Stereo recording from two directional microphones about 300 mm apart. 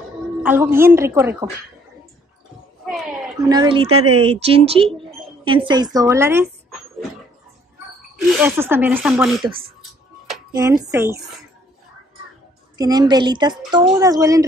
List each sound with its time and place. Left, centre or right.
0.4 s a woman's voice: centre
3.4 s a woman's voice: centre
8.4 s a woman's voice: centre
10.5 s a woman's voice: centre
12.7 s a woman's voice: centre